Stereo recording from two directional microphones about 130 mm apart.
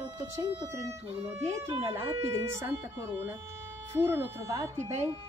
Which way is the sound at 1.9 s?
20° right (ahead or behind).